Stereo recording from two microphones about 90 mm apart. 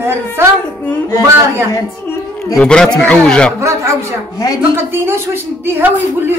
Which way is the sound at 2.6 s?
10° left (ahead or behind).